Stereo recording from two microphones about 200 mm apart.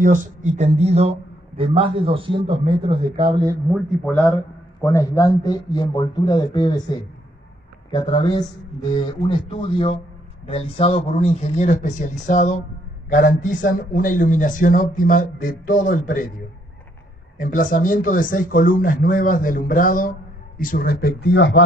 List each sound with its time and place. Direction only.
0.0 s a man's voice: 40° right (ahead or behind); by 3.5 s 25° right (ahead or behind)
3.7 s speech: 5° left (ahead or behind)
4.8 s speech: 15° left (ahead or behind)
9.5 s speech: 25° left (ahead or behind); by 16.3 s 45° left (ahead or behind)
17.4 s speech: 40° left (ahead or behind); by 21.6 s 65° left (ahead or behind)